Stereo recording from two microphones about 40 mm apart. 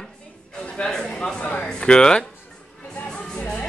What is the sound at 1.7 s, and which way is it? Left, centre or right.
Speech, centre.